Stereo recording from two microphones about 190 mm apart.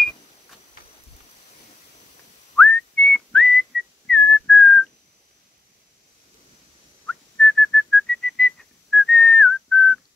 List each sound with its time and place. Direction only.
2.5 s whistling: 5° left (ahead or behind)
7.3 s whistling: 5° left (ahead or behind)